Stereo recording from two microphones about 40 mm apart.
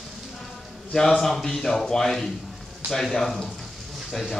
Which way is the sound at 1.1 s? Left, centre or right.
Centre.